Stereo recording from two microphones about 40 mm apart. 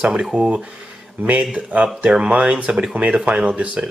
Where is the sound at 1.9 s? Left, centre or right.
Right.